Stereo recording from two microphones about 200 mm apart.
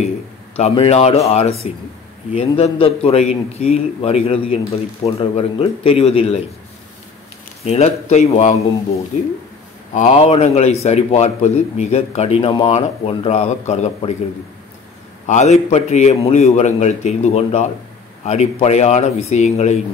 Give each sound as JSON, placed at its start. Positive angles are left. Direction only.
{"t": 0.6, "sound": "a man's voice", "side_deg": 30}
{"t": 7.6, "sound": "a man's voice", "side_deg": 30}
{"t": 15.2, "sound": "a man's voice", "side_deg": 35}